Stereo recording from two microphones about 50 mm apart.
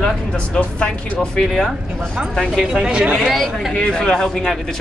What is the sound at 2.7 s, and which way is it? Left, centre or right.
Speech, centre.